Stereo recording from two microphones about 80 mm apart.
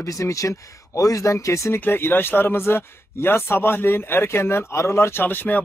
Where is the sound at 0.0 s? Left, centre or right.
Left.